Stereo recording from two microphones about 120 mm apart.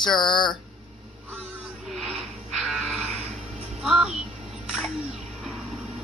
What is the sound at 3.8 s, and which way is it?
Speech, 5° right (ahead or behind).